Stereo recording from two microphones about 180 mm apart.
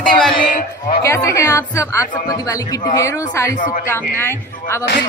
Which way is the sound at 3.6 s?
50° left (ahead or behind).